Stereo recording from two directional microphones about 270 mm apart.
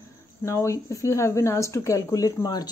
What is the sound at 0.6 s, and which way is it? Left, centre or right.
Speech, centre.